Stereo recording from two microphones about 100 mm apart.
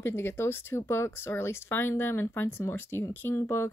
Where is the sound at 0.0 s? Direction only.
25° left (ahead or behind).